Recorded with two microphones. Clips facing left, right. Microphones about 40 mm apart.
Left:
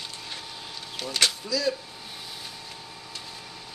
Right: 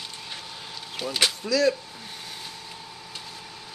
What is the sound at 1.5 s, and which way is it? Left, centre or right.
Speech, right.